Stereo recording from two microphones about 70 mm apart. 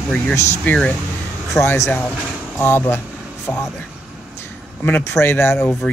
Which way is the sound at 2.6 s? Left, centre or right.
Left.